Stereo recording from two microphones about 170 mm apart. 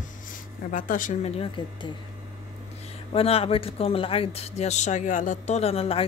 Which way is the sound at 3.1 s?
35° left (ahead or behind).